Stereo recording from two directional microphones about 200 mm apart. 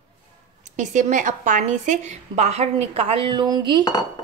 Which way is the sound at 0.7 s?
40° right (ahead or behind).